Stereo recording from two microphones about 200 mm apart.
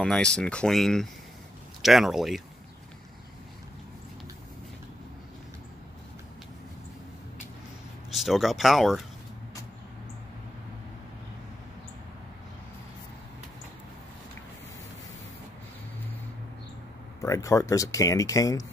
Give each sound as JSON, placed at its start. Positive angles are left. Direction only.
{"t": 0.0, "sound": "speech", "side_deg": 5}
{"t": 8.1, "sound": "speech", "side_deg": 0}
{"t": 17.2, "sound": "speech", "side_deg": 15}